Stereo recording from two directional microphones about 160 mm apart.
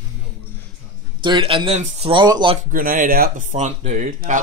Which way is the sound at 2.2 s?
25° right (ahead or behind).